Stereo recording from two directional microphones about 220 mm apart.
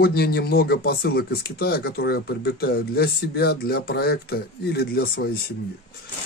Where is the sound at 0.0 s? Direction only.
45° left (ahead or behind).